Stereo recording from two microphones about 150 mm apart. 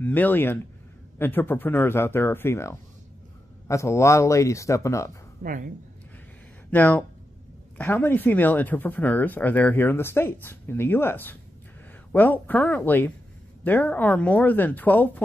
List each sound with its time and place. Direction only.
0.0 s speech: 10° left (ahead or behind)
5.4 s speech: 65° right (ahead or behind)
6.7 s speech: 10° left (ahead or behind)